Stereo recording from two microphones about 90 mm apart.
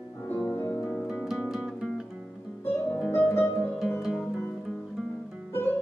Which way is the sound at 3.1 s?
25° left (ahead or behind).